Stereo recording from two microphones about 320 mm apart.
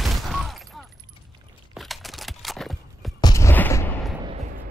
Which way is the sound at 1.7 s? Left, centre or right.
Centre.